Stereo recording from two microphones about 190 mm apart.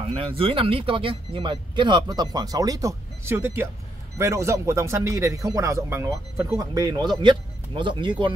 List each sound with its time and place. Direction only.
0.0 s speech: 30° right (ahead or behind)